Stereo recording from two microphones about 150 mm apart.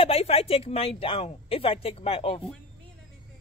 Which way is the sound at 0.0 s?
40° left (ahead or behind).